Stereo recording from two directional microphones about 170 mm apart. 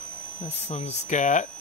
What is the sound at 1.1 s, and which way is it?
Speech, 45° left (ahead or behind).